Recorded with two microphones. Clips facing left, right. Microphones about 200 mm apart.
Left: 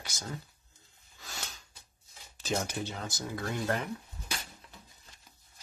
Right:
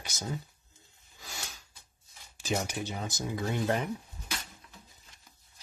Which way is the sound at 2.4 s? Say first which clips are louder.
Right 1 dB; 10° right (ahead or behind).